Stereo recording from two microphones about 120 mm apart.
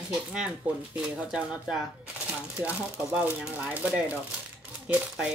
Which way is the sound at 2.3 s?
10° right (ahead or behind).